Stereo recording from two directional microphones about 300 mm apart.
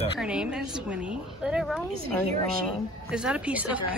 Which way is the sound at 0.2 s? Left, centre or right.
Centre.